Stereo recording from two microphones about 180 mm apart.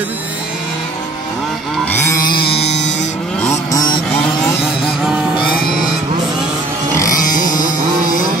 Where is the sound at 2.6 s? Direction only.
75° left (ahead or behind).